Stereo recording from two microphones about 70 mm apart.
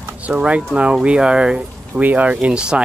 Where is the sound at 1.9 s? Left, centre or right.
Right.